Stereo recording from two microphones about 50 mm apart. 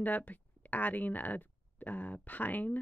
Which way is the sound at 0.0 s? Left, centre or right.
Left.